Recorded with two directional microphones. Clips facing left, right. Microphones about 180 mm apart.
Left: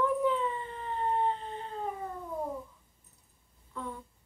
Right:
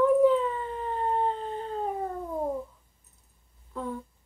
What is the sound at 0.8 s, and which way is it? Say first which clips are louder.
Howl: right 2 dB; 40° right (ahead or behind).